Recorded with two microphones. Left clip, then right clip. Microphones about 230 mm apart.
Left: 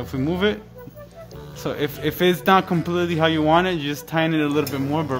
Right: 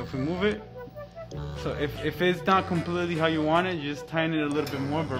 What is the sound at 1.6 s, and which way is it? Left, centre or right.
A man's voice, left.